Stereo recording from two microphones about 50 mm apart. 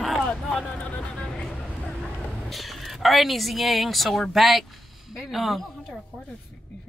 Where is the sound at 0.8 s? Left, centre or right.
Left.